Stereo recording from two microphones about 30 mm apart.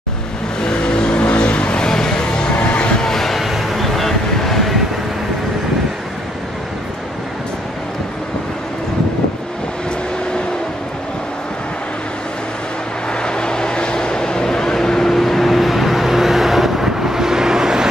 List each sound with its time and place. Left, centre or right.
0.6 s vehicle: left
1.2 s vehicle: left
1.9 s a sound: centre
2.5 s vehicle: left
3.0 s a sound: centre
13.1 s vehicle: left; by 17.8 s centre